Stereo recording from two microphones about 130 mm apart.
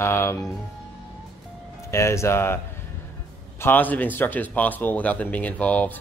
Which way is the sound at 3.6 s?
15° left (ahead or behind).